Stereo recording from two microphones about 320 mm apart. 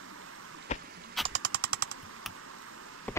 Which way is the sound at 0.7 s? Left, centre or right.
Left.